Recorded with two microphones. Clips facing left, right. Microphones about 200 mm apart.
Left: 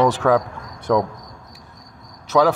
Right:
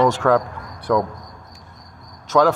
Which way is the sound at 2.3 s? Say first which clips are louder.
Even; 15° left (ahead or behind).